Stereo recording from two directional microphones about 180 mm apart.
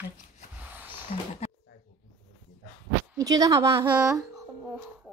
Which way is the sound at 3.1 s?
20° right (ahead or behind).